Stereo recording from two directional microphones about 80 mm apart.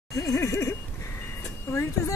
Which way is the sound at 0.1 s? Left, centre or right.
Left.